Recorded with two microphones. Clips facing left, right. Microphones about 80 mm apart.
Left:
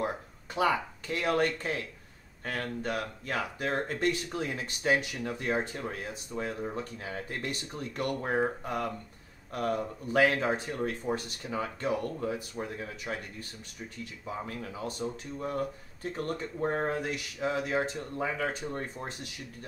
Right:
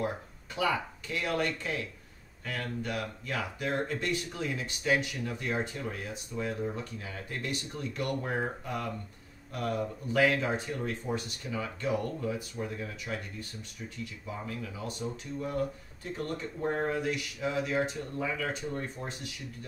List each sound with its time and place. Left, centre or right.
0.6 s speech: left
14.4 s speech: left